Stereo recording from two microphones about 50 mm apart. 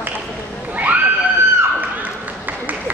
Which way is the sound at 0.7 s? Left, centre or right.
Right.